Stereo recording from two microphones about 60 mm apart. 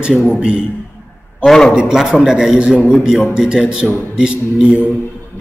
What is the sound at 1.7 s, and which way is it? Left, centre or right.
A man's voice, centre.